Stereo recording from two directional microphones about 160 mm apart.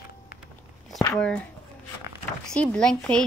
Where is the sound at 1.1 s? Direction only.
5° left (ahead or behind).